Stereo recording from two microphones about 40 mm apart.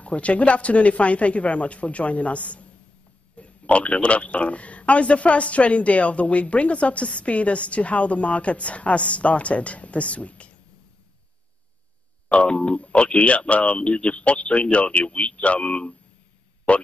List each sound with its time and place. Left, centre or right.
0.0 s a man's voice: left
12.3 s a man's voice: left